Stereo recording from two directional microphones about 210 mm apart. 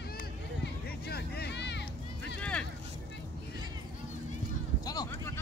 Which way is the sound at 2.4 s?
5° left (ahead or behind).